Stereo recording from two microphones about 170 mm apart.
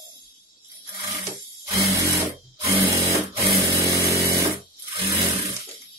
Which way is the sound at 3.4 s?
20° right (ahead or behind).